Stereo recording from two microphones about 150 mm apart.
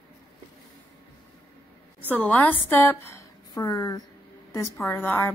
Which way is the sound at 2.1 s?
10° left (ahead or behind).